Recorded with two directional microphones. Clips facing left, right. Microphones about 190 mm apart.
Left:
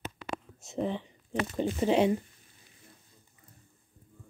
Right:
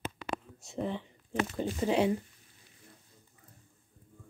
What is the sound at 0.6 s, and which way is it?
Speech, 20° left (ahead or behind).